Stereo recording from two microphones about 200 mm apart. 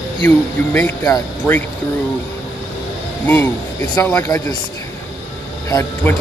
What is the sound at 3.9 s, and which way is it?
Speech, 15° left (ahead or behind).